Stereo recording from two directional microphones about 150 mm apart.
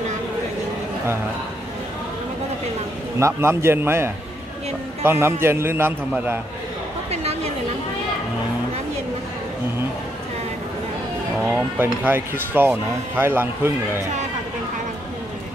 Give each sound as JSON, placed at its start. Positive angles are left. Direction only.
{"t": 3.2, "sound": "speech", "side_deg": -20}
{"t": 11.4, "sound": "speech", "side_deg": -10}